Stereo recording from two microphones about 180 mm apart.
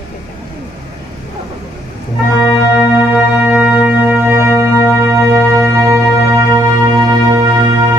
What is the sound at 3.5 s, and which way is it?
Music, 10° right (ahead or behind).